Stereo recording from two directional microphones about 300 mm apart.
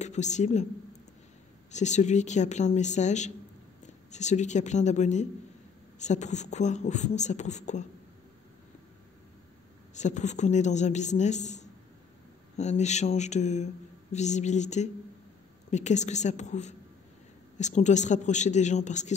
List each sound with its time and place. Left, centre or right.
0.0 s speech: left
1.7 s speech: left
9.9 s speech: left